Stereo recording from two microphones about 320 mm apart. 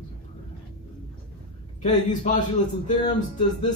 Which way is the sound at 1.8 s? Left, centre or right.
Left.